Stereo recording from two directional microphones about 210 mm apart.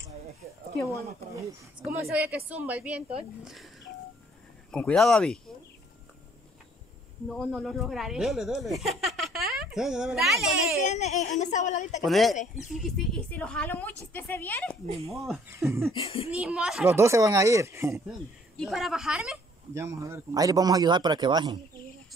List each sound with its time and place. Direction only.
1.4 s speech: 5° right (ahead or behind)
4.6 s speech: 5° left (ahead or behind)
7.2 s speech: centre (ahead or behind)
10.8 s speech: 35° left (ahead or behind)
12.0 s a woman's voice: centre (ahead or behind)
15.5 s speech: 15° right (ahead or behind)
15.9 s speech: 25° left (ahead or behind)
16.3 s speech: 5° right (ahead or behind)
18.6 s speech: centre (ahead or behind); by 21.5 s 20° right (ahead or behind)